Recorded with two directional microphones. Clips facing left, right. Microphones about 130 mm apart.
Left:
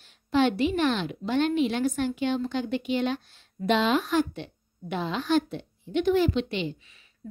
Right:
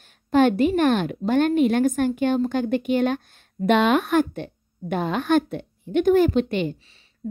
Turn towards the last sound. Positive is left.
turn(degrees=-50)  # may be behind; listen again after turning